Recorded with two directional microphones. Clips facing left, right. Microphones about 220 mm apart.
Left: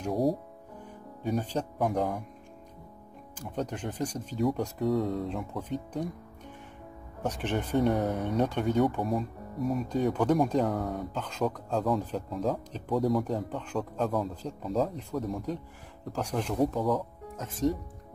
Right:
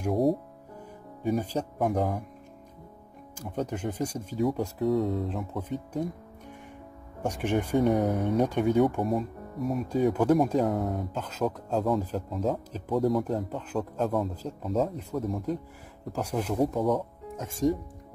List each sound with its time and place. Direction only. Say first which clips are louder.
0.0 s speech: right 3 dB; centre (ahead or behind)
2.0 s speech: right 1 dB; 25° right (ahead or behind)
3.3 s speech: right 2 dB; 10° right (ahead or behind)
7.2 s speech: right 3 dB; 10° right (ahead or behind)
16.5 s speech: right 1 dB; 25° right (ahead or behind)
16.8 s speech: right 2 dB; centre (ahead or behind)